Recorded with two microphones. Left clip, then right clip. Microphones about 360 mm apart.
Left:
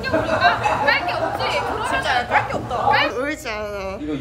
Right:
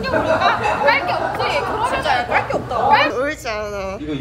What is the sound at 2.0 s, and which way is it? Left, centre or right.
Speech, centre.